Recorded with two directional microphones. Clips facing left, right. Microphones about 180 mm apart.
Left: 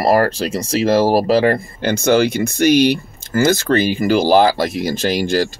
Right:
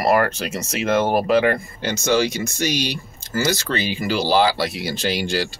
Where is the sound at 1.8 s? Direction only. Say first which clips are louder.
Left 5 dB; 55° left (ahead or behind).